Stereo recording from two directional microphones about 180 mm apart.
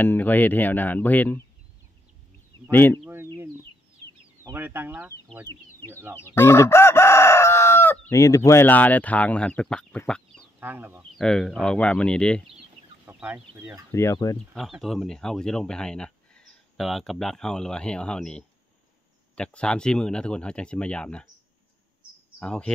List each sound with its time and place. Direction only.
0.0 s speech: 10° left (ahead or behind)
4.4 s speech: 15° right (ahead or behind)
6.1 s speech: 15° left (ahead or behind)
10.6 s speech: 10° right (ahead or behind)
11.1 s speech: 5° left (ahead or behind)
13.0 s speech: 10° right (ahead or behind)
13.9 s speech: 15° left (ahead or behind)
14.5 s speech: centre (ahead or behind)
22.4 s speech: 5° left (ahead or behind)